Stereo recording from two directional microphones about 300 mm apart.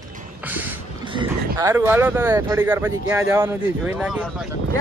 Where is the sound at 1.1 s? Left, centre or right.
Centre.